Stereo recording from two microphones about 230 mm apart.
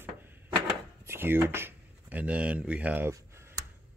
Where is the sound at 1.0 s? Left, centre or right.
Centre.